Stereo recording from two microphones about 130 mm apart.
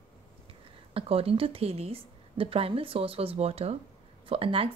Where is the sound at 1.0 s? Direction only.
45° right (ahead or behind).